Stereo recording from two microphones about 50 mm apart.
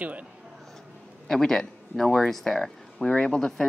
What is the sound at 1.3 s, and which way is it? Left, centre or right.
Speech, centre.